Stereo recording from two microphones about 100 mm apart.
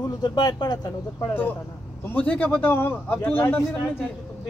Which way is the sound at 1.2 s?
20° left (ahead or behind).